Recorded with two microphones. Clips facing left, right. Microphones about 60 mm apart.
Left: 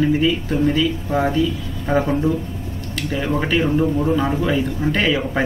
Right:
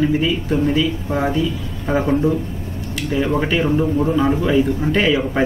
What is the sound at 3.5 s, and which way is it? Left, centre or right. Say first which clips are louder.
Speech: even; centre.